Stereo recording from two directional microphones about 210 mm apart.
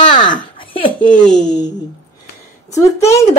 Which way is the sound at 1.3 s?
20° left (ahead or behind).